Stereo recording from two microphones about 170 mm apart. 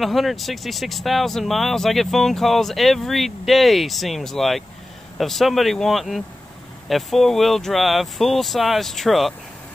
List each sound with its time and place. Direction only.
0.0 s speech: centre (ahead or behind)